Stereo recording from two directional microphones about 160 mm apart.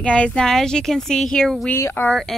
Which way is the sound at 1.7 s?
15° left (ahead or behind).